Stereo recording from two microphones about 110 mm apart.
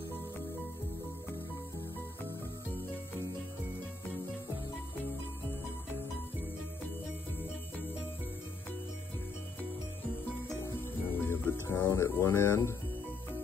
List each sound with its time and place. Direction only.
10.6 s music: 20° left (ahead or behind)